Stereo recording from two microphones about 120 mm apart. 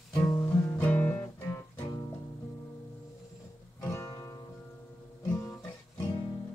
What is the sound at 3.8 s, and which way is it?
Music, 25° left (ahead or behind).